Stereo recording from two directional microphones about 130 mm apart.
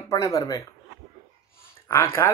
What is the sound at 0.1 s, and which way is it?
Speech, 30° left (ahead or behind).